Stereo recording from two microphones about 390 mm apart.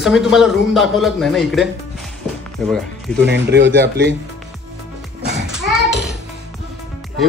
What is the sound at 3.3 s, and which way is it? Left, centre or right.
Speech, right.